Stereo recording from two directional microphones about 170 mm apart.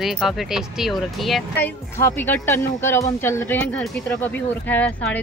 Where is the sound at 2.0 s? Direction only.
15° left (ahead or behind).